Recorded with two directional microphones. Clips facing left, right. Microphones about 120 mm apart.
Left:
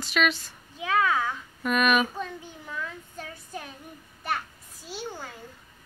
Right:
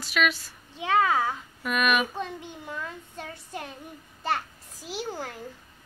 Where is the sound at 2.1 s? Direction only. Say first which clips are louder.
Right 1 dB; 20° right (ahead or behind).